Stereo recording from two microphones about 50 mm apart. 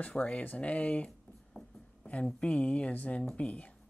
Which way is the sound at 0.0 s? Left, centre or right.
Left.